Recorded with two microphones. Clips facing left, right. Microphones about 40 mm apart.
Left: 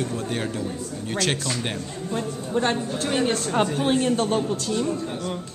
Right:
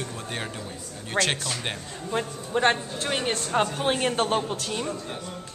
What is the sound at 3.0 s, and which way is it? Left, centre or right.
Speech, centre.